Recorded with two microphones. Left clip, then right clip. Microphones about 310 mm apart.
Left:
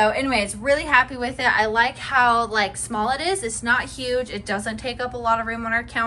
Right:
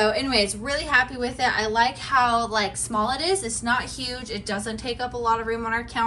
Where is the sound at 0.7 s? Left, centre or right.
Centre.